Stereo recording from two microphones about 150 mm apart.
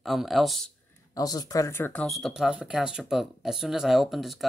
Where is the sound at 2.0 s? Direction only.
Centre (ahead or behind).